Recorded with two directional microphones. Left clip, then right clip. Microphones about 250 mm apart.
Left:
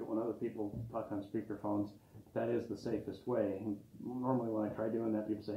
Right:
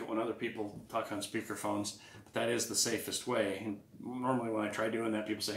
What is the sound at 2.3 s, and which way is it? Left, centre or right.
Speech, right.